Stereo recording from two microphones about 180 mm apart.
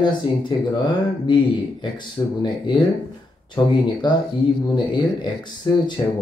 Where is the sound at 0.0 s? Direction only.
25° left (ahead or behind).